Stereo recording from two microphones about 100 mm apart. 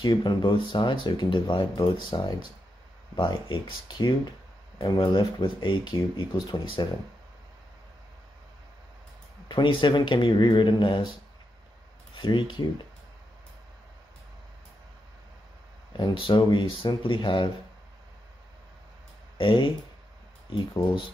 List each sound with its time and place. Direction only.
0.0 s speech: 50° left (ahead or behind)
9.5 s speech: 55° left (ahead or behind)
12.2 s speech: 55° left (ahead or behind)
16.2 s speech: 55° left (ahead or behind)
19.3 s speech: 55° left (ahead or behind)